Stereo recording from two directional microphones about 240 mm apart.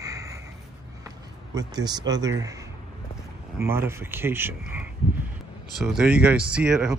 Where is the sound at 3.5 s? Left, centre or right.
Centre.